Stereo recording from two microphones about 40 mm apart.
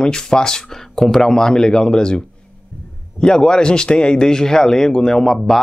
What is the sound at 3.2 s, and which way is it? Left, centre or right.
Speech, centre.